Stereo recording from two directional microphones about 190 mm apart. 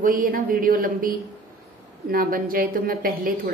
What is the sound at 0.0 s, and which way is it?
A woman's voice, 45° right (ahead or behind).